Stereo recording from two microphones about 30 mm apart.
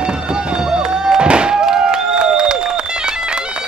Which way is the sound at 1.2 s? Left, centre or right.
Right.